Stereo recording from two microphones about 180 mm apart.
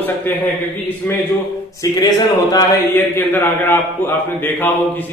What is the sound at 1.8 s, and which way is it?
A man's voice, 20° left (ahead or behind).